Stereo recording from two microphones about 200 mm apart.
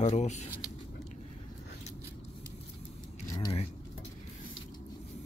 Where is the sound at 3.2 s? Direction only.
20° left (ahead or behind).